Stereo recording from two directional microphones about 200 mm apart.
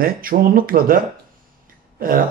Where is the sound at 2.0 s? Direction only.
45° right (ahead or behind).